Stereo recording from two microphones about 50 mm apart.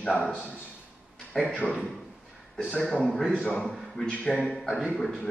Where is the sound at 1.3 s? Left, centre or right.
Centre.